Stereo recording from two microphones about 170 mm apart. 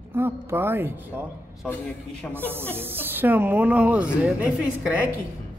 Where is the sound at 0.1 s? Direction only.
15° right (ahead or behind).